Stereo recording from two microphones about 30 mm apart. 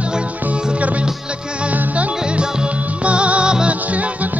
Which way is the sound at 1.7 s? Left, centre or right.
Right.